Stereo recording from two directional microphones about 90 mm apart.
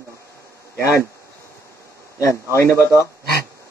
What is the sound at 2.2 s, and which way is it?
Speech, 35° left (ahead or behind).